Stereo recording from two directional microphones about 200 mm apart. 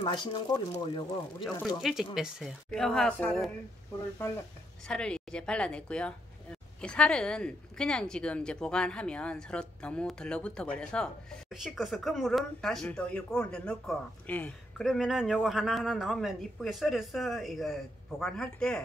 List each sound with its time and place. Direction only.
0.0 s speech: 25° left (ahead or behind)
1.8 s speech: centre (ahead or behind)
4.8 s speech: 5° left (ahead or behind)